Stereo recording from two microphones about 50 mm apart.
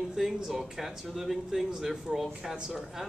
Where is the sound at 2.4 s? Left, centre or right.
Centre.